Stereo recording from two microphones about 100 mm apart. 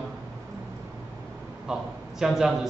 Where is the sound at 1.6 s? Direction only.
5° right (ahead or behind).